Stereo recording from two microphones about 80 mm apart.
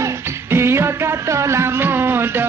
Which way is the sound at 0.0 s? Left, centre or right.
Right.